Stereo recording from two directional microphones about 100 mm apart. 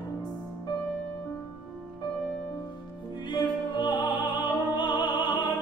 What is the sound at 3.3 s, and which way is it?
Music, 50° left (ahead or behind).